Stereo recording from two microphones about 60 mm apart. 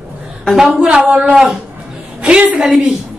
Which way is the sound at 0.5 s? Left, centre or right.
Centre.